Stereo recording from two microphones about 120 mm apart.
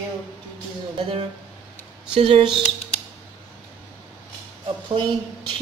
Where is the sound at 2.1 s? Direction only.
50° right (ahead or behind).